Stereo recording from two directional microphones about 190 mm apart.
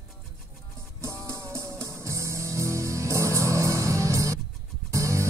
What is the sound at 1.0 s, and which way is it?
Music, 15° right (ahead or behind).